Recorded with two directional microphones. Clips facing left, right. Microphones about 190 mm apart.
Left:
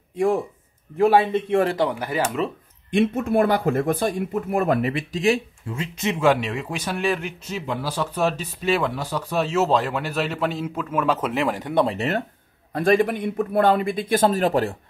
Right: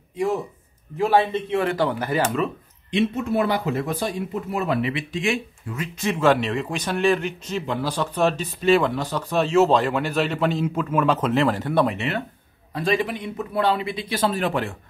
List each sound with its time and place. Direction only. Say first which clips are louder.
0.9 s speech: left 2 dB; 50° left (ahead or behind)
1.9 s speech: right 2 dB; 10° left (ahead or behind)
2.9 s speech: left 2 dB; 50° left (ahead or behind)
6.0 s speech: right 1 dB; 15° left (ahead or behind)
11.9 s speech: left 2 dB; 40° left (ahead or behind)
12.7 s speech: left 4 dB; 55° left (ahead or behind)